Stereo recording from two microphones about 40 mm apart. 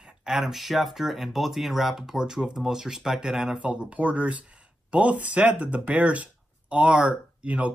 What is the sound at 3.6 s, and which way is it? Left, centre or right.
Speech, right.